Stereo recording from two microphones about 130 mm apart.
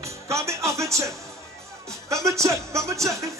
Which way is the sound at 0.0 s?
20° right (ahead or behind).